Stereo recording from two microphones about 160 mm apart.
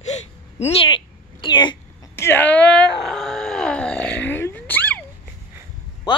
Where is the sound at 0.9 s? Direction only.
30° left (ahead or behind).